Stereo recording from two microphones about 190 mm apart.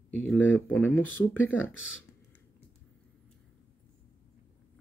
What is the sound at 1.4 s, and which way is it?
Speech, 90° left.